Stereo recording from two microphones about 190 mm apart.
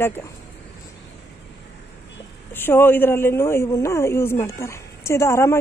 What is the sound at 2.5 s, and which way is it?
A woman's voice, 10° left (ahead or behind).